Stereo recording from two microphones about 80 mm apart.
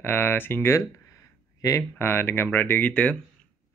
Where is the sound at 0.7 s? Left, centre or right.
Left.